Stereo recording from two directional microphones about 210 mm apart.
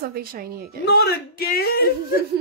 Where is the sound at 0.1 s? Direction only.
45° right (ahead or behind).